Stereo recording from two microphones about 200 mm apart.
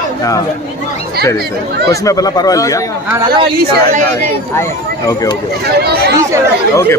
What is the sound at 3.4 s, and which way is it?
Speech, 50° right (ahead or behind).